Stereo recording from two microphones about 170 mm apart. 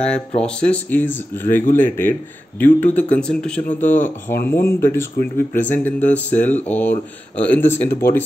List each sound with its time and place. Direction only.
0.4 s speech: 5° left (ahead or behind)